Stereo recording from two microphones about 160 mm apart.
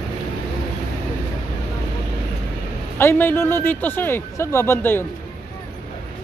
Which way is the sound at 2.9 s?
15° left (ahead or behind).